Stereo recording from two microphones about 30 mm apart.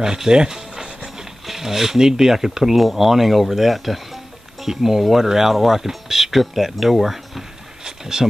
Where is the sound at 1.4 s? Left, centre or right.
Centre.